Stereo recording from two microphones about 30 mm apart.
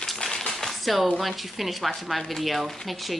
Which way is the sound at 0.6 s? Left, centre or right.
Centre.